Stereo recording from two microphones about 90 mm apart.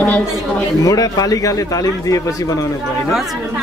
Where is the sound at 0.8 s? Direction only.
40° left (ahead or behind).